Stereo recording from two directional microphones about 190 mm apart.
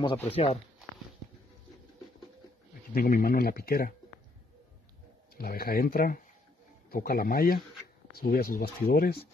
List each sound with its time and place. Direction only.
0.0 s speech: 30° left (ahead or behind)
2.9 s speech: 50° left (ahead or behind)
5.3 s speech: 50° left (ahead or behind)